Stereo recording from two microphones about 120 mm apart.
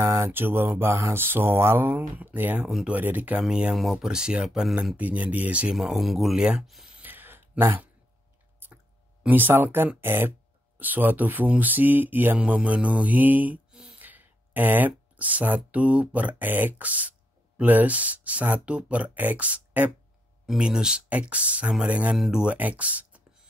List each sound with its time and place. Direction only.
0.0 s speech: 20° right (ahead or behind); by 4.9 s 5° right (ahead or behind)
4.9 s speech: 15° right (ahead or behind)
7.0 s a sound: 15° right (ahead or behind)
9.2 s speech: 15° right (ahead or behind)